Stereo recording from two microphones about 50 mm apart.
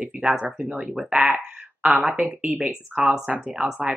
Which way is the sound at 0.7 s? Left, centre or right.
Centre.